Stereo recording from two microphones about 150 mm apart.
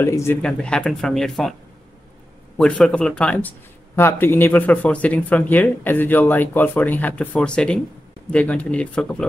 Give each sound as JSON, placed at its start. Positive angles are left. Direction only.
{"t": 0.0, "sound": "a man's voice", "side_deg": 15}
{"t": 0.4, "sound": "speech", "side_deg": 5}
{"t": 2.5, "sound": "a man's voice", "side_deg": 5}